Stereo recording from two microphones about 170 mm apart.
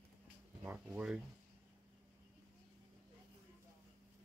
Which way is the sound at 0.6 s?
5° right (ahead or behind).